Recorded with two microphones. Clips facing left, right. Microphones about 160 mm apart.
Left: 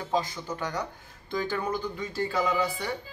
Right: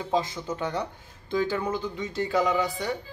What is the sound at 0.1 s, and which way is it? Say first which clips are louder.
Speech: right 2 dB; 25° right (ahead or behind).